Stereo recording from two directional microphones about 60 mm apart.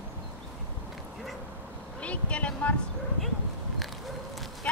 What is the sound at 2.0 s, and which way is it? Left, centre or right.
Vehicle, left.